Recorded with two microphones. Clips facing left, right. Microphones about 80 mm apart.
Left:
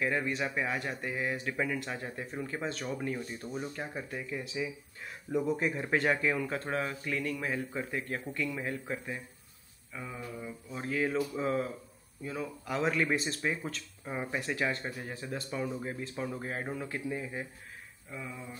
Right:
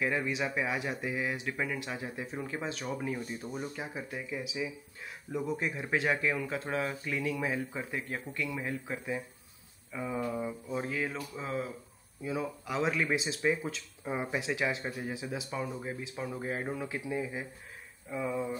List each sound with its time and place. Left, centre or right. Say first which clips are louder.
0.0 s speech: even; centre
10.2 s mantra: right 7 dB; right
10.7 s speech: left 4 dB; centre